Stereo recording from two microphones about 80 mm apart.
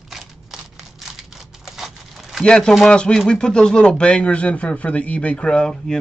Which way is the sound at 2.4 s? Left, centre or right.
Centre.